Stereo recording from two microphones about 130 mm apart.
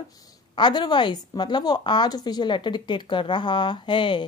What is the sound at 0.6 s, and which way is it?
A woman's voice, 35° left (ahead or behind).